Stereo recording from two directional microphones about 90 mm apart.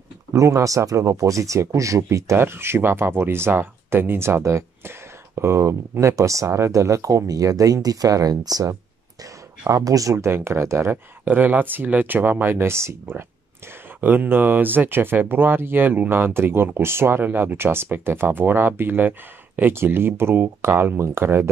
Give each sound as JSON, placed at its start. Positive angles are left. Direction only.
{"t": 0.3, "sound": "speech", "side_deg": -35}
{"t": 11.2, "sound": "speech", "side_deg": -20}